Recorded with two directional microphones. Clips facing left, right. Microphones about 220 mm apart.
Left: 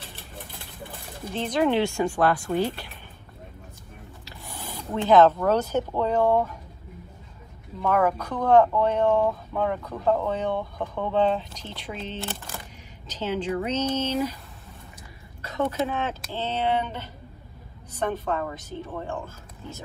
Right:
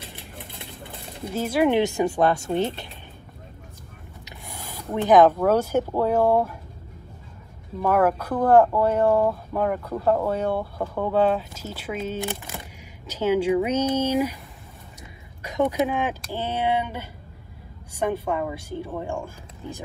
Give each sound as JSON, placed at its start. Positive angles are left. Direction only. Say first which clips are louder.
{"t": 1.3, "sound": "speech", "louder": "right 2 dB", "side_deg": -5}
{"t": 4.2, "sound": "speech", "louder": "right 1 dB", "side_deg": -15}
{"t": 7.8, "sound": "speech", "louder": "right 2 dB", "side_deg": -10}
{"t": 15.4, "sound": "speech", "louder": "right 4 dB", "side_deg": -15}